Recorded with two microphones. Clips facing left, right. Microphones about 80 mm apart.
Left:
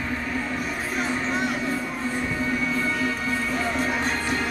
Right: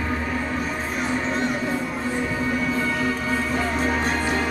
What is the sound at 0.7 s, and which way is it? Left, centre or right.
Music, centre.